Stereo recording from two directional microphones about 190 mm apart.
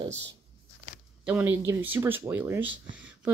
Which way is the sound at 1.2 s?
10° right (ahead or behind).